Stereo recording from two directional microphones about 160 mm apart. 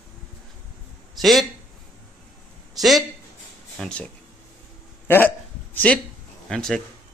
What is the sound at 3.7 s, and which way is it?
Speech, 5° left (ahead or behind).